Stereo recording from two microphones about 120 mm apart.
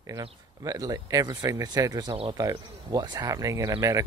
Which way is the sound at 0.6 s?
30° right (ahead or behind).